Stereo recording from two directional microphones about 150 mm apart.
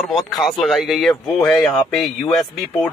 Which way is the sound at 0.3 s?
Centre (ahead or behind).